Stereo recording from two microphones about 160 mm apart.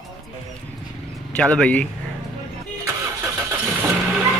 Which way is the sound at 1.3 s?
5° left (ahead or behind).